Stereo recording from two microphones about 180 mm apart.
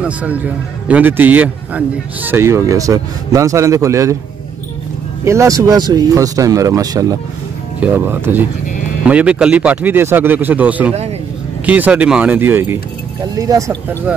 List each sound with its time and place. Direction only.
0.0 s a man's voice: 5° right (ahead or behind)
5.2 s a man's voice: 15° right (ahead or behind)